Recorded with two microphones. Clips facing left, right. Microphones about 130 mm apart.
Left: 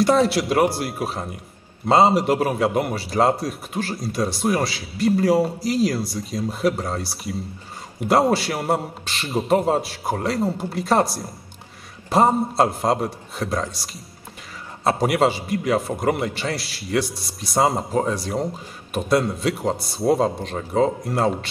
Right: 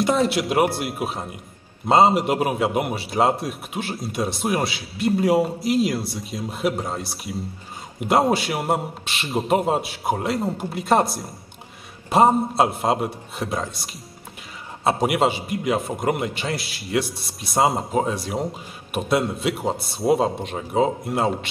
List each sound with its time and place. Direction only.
0.0 s a man's voice: centre (ahead or behind)
14.9 s a man's voice: centre (ahead or behind)
17.1 s speech: 55° right (ahead or behind)
17.4 s a man's voice: centre (ahead or behind)